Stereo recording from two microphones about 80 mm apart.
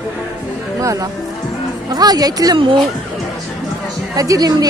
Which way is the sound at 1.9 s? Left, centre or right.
Right.